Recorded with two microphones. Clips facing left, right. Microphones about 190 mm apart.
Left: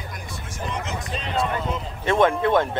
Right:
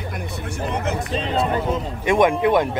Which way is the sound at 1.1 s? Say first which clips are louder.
Right 3 dB; 35° right (ahead or behind).